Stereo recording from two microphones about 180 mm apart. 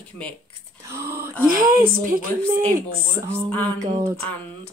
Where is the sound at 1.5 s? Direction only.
50° right (ahead or behind).